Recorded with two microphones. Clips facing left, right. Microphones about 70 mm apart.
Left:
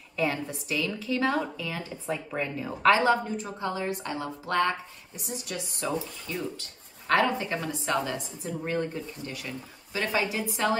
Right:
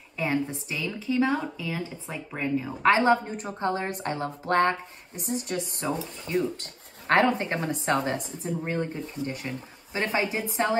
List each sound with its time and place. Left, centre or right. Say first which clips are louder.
0.1 s speech: right 1 dB; centre
2.9 s a woman's voice: right 1 dB; right
6.5 s a woman's voice: right 3 dB; right
8.6 s speech: left 4 dB; right
9.3 s a woman's voice: right 3 dB; right